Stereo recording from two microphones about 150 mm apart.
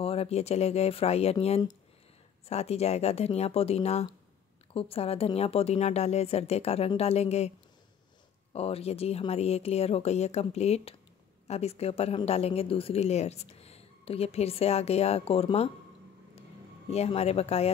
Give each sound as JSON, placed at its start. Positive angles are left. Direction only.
{"t": 0.0, "sound": "a woman's voice", "side_deg": 40}
{"t": 8.5, "sound": "a woman's voice", "side_deg": 40}
{"t": 16.9, "sound": "a woman's voice", "side_deg": 45}